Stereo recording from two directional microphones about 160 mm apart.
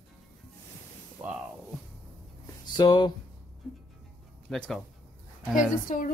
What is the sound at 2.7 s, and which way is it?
Speech, 25° left (ahead or behind).